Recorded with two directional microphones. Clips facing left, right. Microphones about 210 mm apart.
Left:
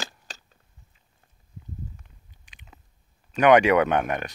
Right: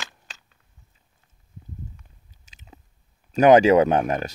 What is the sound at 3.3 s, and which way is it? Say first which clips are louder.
Speech: right 3 dB; 35° right (ahead or behind).